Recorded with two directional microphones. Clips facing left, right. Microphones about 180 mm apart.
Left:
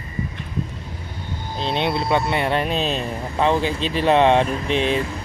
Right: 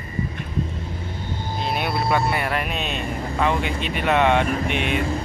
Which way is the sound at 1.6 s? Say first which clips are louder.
Left 3 dB; 25° left (ahead or behind).